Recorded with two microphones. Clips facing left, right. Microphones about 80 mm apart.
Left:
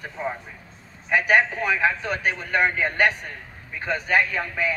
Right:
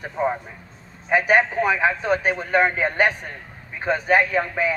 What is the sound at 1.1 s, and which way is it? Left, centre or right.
Speech, right.